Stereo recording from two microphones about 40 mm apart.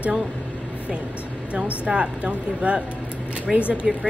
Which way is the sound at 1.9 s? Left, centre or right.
Right.